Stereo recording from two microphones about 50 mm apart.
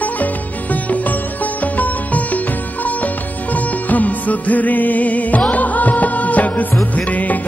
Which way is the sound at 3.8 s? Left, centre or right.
Left.